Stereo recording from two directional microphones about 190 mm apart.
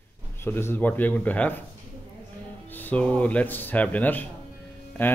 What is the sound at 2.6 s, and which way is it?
A man's voice, 10° left (ahead or behind).